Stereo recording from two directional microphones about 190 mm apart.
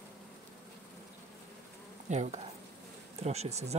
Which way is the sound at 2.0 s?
40° right (ahead or behind).